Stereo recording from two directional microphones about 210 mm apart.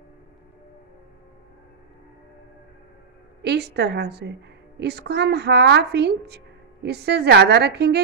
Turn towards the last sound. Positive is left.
turn(degrees=-50)  # may be behind; listen again after turning